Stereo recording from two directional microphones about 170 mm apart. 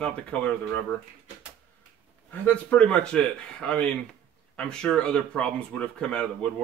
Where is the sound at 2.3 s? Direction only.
10° left (ahead or behind).